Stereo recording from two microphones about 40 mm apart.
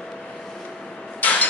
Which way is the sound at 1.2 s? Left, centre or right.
Left.